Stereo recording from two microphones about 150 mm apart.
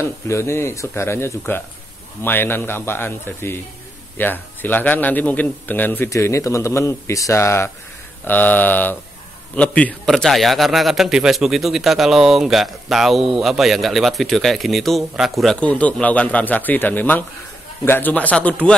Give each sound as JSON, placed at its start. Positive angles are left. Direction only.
{"t": 0.0, "sound": "a man's voice", "side_deg": 15}